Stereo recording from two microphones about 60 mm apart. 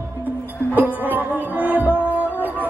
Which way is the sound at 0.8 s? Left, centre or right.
Right.